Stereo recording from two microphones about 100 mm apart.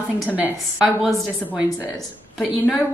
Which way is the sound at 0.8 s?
Centre (ahead or behind).